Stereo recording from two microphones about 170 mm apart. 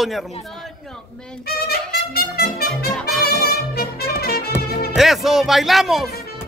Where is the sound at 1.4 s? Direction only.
65° left (ahead or behind).